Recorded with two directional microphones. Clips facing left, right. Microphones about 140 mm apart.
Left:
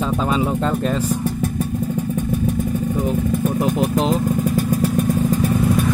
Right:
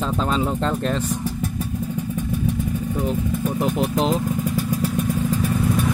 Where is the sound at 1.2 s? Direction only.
50° left (ahead or behind).